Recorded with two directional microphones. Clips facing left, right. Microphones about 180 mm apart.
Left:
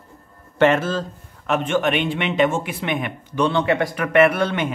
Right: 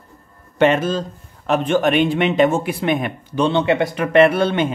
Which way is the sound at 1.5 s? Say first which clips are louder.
Right 3 dB; 40° right (ahead or behind).